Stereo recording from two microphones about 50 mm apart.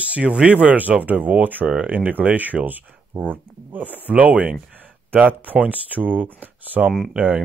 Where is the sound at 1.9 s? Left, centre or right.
Right.